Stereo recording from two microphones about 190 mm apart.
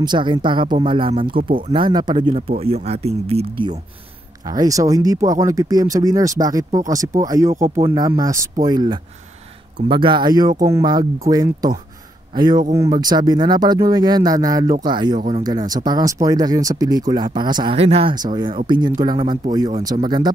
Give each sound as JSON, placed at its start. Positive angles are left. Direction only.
{"t": 0.0, "sound": "speech", "side_deg": -25}
{"t": 15.1, "sound": "speech", "side_deg": -40}
{"t": 15.4, "sound": "speech", "side_deg": -20}